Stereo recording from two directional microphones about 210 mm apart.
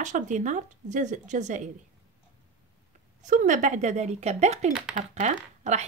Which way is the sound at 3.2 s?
35° right (ahead or behind).